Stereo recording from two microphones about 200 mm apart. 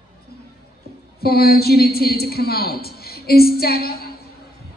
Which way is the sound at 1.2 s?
50° left (ahead or behind).